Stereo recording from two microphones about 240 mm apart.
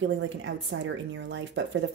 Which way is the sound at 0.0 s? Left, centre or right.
Right.